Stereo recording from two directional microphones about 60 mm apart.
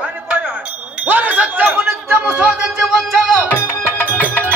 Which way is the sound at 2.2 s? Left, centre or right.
Centre.